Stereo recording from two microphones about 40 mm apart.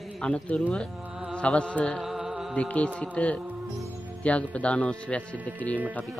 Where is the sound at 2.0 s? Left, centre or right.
Centre.